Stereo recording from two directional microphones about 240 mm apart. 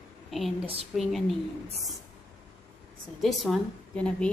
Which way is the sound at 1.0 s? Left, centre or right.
Centre.